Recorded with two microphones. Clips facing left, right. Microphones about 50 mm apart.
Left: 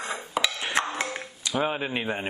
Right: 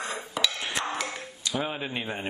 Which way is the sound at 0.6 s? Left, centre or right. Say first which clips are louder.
Left 3 dB; left.